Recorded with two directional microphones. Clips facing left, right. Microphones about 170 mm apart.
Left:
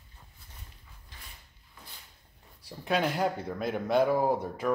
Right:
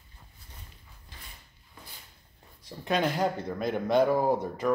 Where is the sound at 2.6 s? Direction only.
5° left (ahead or behind).